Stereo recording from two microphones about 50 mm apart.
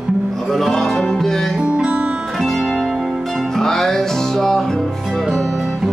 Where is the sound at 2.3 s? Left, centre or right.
Centre.